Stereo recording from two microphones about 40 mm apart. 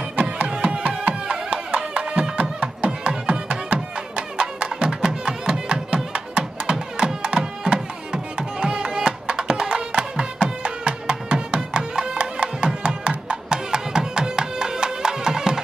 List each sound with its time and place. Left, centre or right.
0.1 s music: right
0.5 s music: right